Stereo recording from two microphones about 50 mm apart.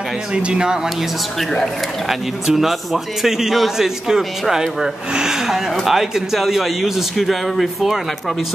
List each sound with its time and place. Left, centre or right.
0.3 s speech: right
1.4 s a man's voice: centre
2.4 s a man's voice: centre